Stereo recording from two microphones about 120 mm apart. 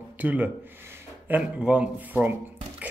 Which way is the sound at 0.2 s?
15° right (ahead or behind).